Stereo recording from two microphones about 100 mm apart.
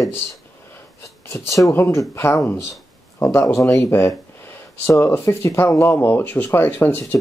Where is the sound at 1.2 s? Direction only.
30° left (ahead or behind).